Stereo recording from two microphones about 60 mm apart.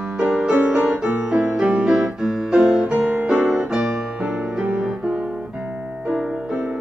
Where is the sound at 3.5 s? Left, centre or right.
Centre.